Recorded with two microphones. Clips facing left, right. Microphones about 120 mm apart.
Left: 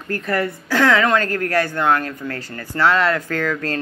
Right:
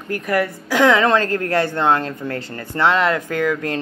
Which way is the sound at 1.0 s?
25° right (ahead or behind).